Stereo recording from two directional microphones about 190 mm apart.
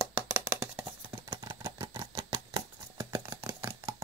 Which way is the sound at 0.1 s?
10° right (ahead or behind).